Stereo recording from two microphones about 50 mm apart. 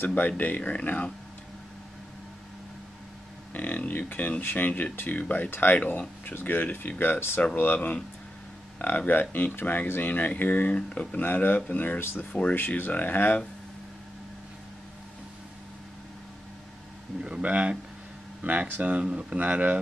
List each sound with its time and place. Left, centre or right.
0.0 s speech: left
3.5 s speech: left
12.0 s speech: left
12.3 s speech: left
12.5 s speech: left
17.2 s speech: right